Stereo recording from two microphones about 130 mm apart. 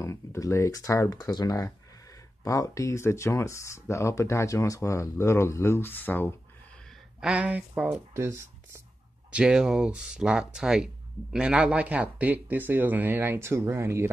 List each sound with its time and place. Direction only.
0.0 s speech: 20° left (ahead or behind)
7.2 s speech: 10° right (ahead or behind)
8.1 s speech: 20° right (ahead or behind)
9.3 s speech: 5° right (ahead or behind)